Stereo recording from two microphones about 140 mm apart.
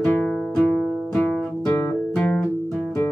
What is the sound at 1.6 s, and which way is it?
Guitar, 25° left (ahead or behind).